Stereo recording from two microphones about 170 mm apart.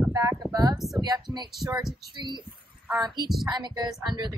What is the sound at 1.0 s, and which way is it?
Speech, 25° right (ahead or behind).